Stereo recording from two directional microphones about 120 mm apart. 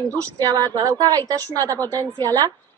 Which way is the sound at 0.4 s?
30° right (ahead or behind).